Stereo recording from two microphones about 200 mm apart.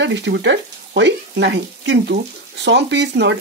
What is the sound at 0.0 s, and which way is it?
Speech, 60° right (ahead or behind).